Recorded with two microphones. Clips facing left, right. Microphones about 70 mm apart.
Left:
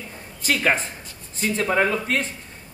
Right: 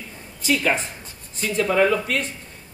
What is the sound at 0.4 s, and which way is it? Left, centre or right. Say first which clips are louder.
A woman's voice: even; left.